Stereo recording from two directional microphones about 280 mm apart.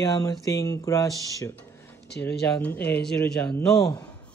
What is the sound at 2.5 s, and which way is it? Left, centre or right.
Speech, centre.